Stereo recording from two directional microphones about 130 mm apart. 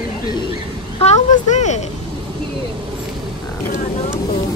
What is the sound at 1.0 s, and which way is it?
Speech, 60° left (ahead or behind).